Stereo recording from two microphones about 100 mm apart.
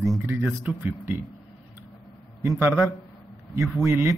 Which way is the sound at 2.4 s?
25° right (ahead or behind).